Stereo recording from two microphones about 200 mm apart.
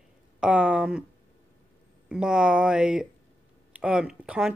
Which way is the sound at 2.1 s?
5° right (ahead or behind).